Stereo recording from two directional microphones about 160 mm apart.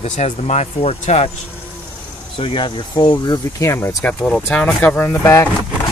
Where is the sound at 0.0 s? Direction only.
45° left (ahead or behind).